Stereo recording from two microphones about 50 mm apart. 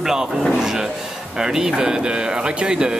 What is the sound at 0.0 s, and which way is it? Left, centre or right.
Speech, centre.